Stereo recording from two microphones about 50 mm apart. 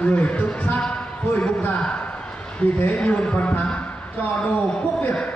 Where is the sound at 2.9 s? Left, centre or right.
Left.